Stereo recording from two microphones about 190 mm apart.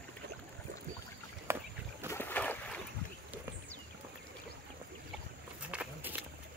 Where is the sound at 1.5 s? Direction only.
15° right (ahead or behind).